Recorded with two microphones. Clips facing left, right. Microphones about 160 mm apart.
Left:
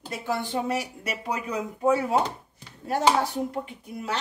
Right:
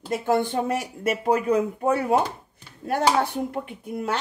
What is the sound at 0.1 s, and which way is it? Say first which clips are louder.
Speech: right 6 dB; 50° right (ahead or behind).